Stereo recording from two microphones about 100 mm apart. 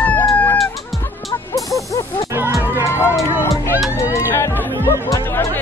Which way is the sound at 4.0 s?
30° left (ahead or behind).